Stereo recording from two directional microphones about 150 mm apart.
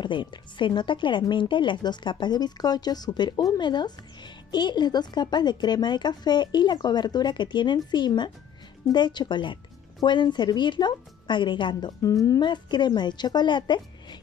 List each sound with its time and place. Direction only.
0.0 s a woman's voice: 30° left (ahead or behind)